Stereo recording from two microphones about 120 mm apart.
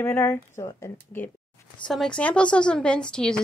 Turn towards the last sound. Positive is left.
turn(degrees=5)  # may be behind; listen again after turning